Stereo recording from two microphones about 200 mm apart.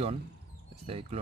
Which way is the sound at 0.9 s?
30° right (ahead or behind).